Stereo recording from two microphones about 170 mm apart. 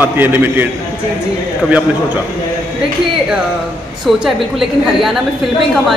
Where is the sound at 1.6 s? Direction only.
5° right (ahead or behind).